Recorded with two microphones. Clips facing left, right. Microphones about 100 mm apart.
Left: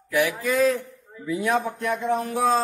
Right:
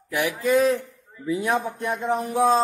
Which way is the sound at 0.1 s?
25° right (ahead or behind).